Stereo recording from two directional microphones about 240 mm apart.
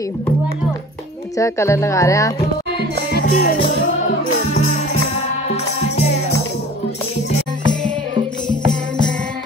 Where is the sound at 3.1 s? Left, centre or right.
Left.